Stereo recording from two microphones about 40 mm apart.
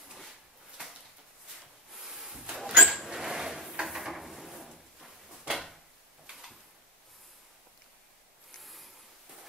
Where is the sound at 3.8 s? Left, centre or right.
Centre.